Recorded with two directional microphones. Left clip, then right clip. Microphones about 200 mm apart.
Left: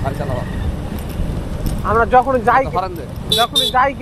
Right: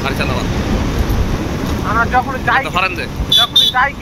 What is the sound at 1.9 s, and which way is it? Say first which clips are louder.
Speech: left 3 dB; 45° left (ahead or behind).